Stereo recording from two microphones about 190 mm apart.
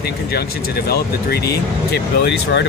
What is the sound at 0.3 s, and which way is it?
Speech, 55° left (ahead or behind).